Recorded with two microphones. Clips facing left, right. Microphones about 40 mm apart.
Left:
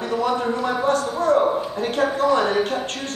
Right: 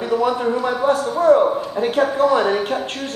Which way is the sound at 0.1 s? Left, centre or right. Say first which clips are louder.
Right 4 dB; centre.